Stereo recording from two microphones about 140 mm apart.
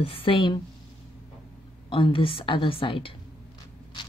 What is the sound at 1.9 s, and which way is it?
Speech, 40° left (ahead or behind).